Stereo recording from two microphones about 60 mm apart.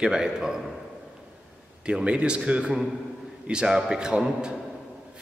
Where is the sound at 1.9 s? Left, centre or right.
Centre.